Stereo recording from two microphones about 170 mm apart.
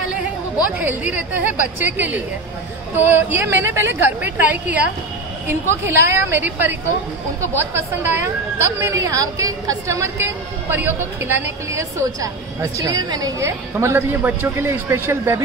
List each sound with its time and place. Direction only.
0.7 s a woman's voice: 10° right (ahead or behind)